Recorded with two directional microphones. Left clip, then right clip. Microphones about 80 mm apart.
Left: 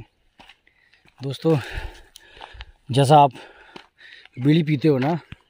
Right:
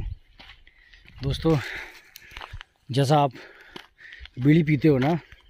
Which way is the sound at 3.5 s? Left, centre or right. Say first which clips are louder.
Even; left.